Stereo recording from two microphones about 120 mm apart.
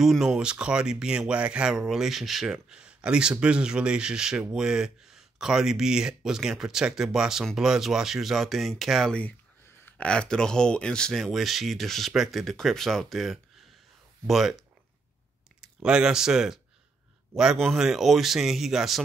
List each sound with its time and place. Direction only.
0.0 s speech: 5° right (ahead or behind)
15.6 s speech: 5° right (ahead or behind)